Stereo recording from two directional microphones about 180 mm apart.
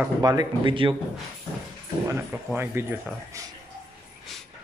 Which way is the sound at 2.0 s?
10° right (ahead or behind).